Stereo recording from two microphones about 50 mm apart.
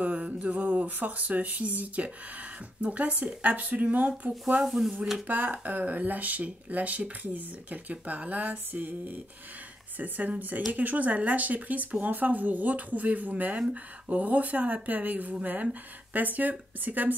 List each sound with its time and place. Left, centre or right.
0.0 s speech: right
4.6 s speech: centre
5.2 s speech: right